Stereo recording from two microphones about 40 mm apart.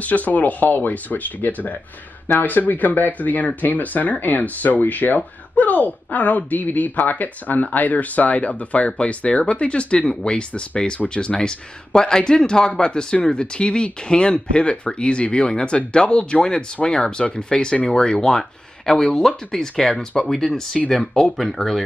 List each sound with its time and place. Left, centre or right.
0.0 s speech: left; by 21.8 s centre